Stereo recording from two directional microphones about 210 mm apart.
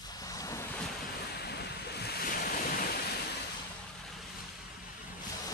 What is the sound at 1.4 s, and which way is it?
Waves, 50° left (ahead or behind).